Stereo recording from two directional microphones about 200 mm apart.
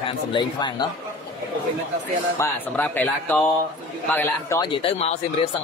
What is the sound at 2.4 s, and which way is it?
Speech, 10° left (ahead or behind).